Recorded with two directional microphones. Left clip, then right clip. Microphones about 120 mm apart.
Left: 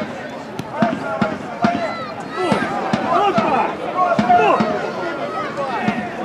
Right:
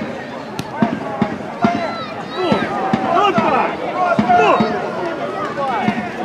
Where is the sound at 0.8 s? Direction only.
40° left (ahead or behind).